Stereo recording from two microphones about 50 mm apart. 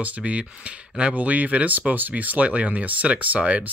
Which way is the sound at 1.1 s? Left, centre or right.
Right.